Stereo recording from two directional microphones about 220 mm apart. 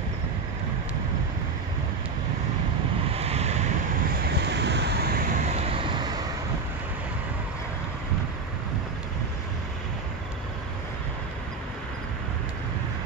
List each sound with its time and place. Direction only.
3.1 s vehicle: 30° right (ahead or behind)
4.4 s vehicle: 50° right (ahead or behind)
5.5 s vehicle: 25° right (ahead or behind)